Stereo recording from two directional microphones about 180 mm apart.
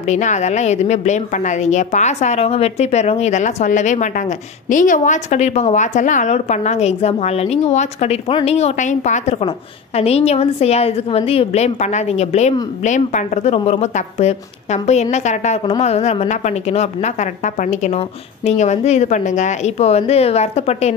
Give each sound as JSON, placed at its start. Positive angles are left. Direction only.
{"t": 0.0, "sound": "a woman's voice", "side_deg": 40}